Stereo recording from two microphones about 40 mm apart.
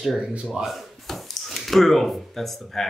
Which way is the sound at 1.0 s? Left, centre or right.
Centre.